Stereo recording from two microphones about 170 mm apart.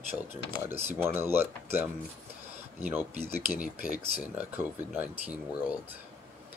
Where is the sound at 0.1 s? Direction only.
10° right (ahead or behind).